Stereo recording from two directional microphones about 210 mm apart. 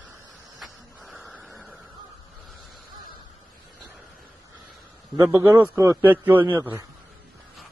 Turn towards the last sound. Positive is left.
turn(degrees=-10)  # may be behind; listen again after turning